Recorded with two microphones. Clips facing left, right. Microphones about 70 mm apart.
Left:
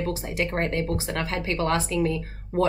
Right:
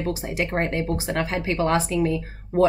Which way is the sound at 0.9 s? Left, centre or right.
Right.